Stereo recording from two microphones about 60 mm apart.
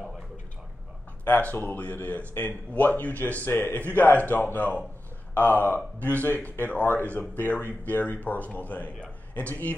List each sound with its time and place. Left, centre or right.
1.2 s speech: left